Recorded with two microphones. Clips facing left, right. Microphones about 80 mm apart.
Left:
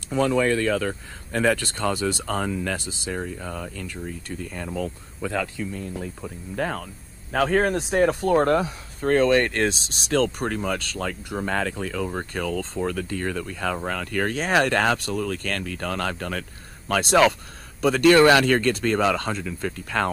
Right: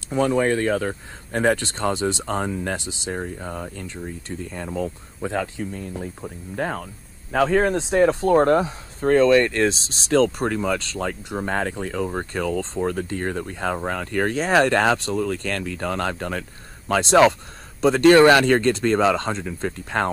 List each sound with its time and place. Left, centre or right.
0.1 s speech: right
4.3 s speech: right
4.6 s speech: right
5.4 s speech: right